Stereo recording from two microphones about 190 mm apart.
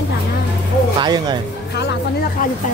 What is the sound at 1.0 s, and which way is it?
Speech, 20° right (ahead or behind).